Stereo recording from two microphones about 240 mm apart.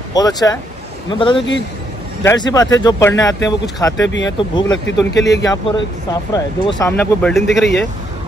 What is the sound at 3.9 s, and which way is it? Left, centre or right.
Speech, left.